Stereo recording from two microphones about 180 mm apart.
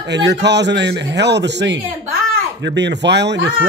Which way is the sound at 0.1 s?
75° right (ahead or behind).